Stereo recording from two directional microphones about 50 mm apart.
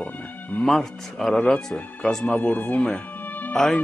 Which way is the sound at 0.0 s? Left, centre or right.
Left.